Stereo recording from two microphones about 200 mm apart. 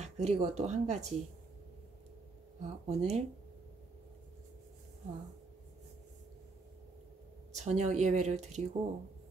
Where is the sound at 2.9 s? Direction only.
30° right (ahead or behind).